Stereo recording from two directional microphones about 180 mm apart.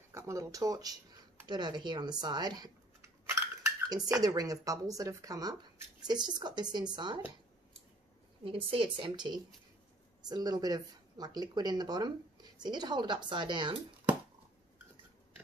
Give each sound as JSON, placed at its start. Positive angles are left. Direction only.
{"t": 0.1, "sound": "speech", "side_deg": -15}
{"t": 8.5, "sound": "speech", "side_deg": -30}